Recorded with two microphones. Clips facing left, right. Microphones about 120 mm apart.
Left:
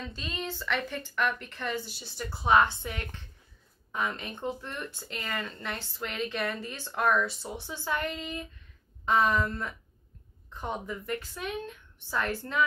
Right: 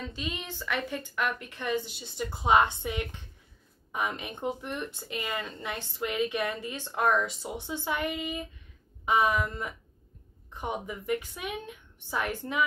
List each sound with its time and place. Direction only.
0.0 s speech: 15° right (ahead or behind)